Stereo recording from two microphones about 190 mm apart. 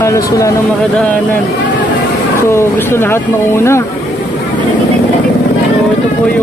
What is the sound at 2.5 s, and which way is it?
Speech, 15° left (ahead or behind).